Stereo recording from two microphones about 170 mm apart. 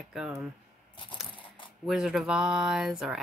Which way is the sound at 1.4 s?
30° left (ahead or behind).